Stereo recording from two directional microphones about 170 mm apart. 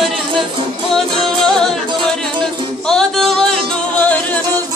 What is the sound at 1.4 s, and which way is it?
Music, centre (ahead or behind).